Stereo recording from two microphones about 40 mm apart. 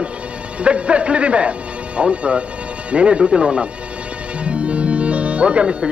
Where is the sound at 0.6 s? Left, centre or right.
Right.